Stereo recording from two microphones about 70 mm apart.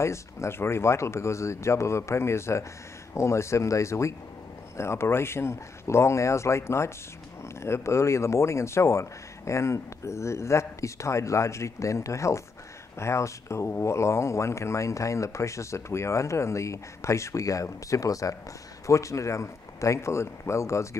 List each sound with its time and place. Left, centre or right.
0.0 s speech: left